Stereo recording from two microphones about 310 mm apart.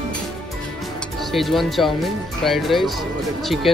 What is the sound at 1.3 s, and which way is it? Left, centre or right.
Speech, centre.